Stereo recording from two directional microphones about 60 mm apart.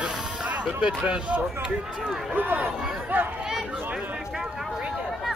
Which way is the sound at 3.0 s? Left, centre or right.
Right.